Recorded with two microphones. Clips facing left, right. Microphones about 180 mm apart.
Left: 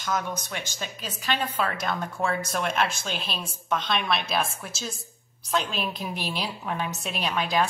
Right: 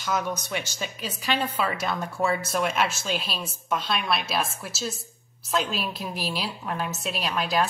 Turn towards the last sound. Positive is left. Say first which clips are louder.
# even
turn(degrees=-5)  # may be behind; listen again after turning